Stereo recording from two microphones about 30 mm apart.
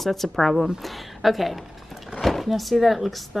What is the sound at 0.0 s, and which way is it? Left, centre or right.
Speech, centre.